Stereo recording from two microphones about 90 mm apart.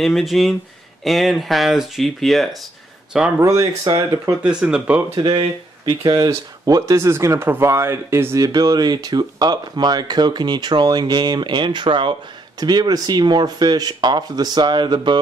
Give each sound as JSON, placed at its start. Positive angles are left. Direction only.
{"t": 0.0, "sound": "speech", "side_deg": 0}
{"t": 3.3, "sound": "speech", "side_deg": -35}
{"t": 4.4, "sound": "speech", "side_deg": -10}
{"t": 5.1, "sound": "speech", "side_deg": -55}
{"t": 7.1, "sound": "speech", "side_deg": -30}